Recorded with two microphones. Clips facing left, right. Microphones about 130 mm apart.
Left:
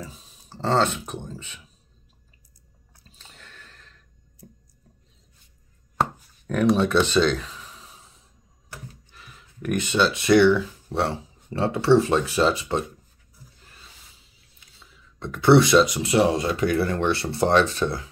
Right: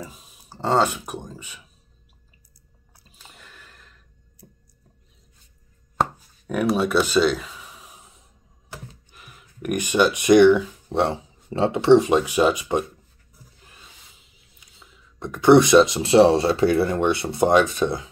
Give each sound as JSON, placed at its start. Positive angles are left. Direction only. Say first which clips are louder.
{"t": 0.0, "sound": "speech", "louder": "right 1 dB", "side_deg": -10}
{"t": 3.0, "sound": "squish", "louder": "right 1 dB", "side_deg": -10}
{"t": 5.9, "sound": "a sound", "louder": "right 1 dB", "side_deg": -5}
{"t": 9.1, "sound": "speech", "louder": "even", "side_deg": -15}
{"t": 13.7, "sound": "a sound", "louder": "right 1 dB", "side_deg": -20}
{"t": 16.9, "sound": "speech", "louder": "right 2 dB", "side_deg": -15}